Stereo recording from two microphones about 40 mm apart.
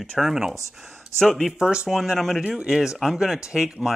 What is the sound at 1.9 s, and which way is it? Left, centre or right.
Speech, centre.